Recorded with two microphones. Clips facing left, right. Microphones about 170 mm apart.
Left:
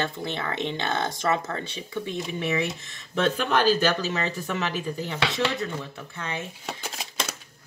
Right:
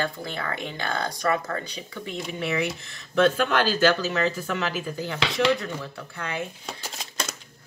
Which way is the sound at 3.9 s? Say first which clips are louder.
Right 3 dB; 20° left (ahead or behind).